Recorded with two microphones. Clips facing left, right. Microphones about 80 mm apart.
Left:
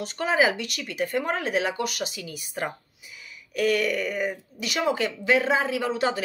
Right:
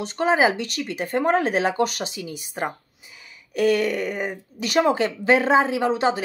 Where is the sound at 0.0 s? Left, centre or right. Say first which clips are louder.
Right 4 dB; right.